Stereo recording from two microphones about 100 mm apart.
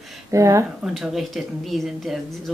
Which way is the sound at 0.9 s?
Centre (ahead or behind).